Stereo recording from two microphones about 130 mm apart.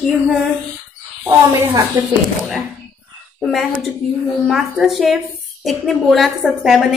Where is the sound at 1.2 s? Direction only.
20° right (ahead or behind).